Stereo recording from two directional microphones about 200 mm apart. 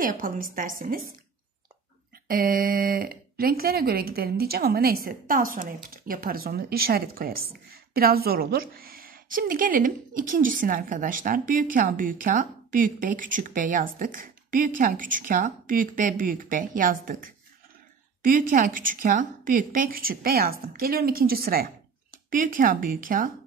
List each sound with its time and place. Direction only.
0.0 s speech: 45° right (ahead or behind)
2.2 s speech: 45° right (ahead or behind)
18.2 s speech: 45° right (ahead or behind)